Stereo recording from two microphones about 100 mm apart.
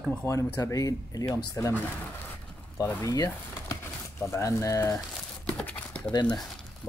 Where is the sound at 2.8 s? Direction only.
30° left (ahead or behind).